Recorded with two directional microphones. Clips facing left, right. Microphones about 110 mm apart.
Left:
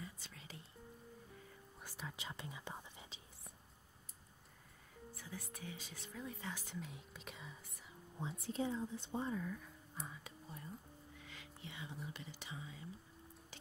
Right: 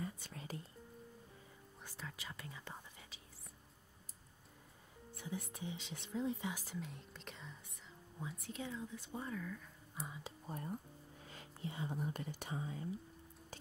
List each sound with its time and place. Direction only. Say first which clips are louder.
0.0 s whispering: right 7 dB; 45° right (ahead or behind)
1.8 s whispering: left 1 dB; 15° left (ahead or behind)
5.2 s whispering: right 6 dB; 20° right (ahead or behind)
6.7 s whispering: right 2 dB; centre (ahead or behind)
8.2 s speech: left 5 dB; 30° left (ahead or behind)
10.0 s speech: right 2 dB; 5° right (ahead or behind)
10.5 s speech: right 8 dB; 55° right (ahead or behind)
11.1 s speech: right 3 dB; 40° right (ahead or behind)